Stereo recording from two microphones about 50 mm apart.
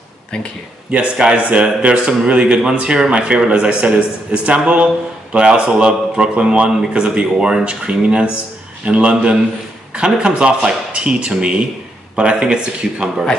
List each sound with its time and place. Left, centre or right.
0.9 s speech: centre